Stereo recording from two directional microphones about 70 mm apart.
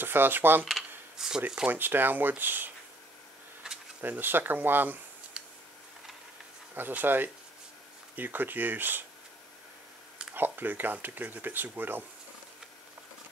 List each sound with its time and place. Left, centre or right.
0.0 s speech: right
0.7 s coin: centre
1.7 s speech: right
4.0 s speech: right
5.4 s tick: centre
6.7 s speech: right
10.3 s speech: right